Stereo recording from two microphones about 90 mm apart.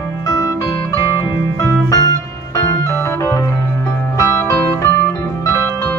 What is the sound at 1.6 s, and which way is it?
Music, 40° left (ahead or behind).